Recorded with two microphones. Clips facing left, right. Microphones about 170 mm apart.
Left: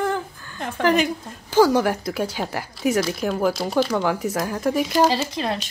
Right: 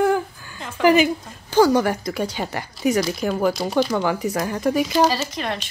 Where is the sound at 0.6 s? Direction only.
55° left (ahead or behind).